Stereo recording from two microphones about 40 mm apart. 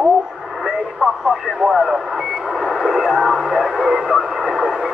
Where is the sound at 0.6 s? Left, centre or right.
Centre.